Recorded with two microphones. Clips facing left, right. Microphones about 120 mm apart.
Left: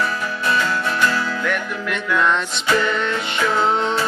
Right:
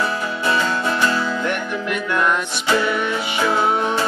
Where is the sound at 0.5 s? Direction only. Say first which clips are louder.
Right 1 dB; 25° right (ahead or behind).